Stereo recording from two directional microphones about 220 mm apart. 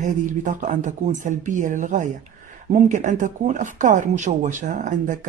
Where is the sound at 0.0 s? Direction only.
35° right (ahead or behind).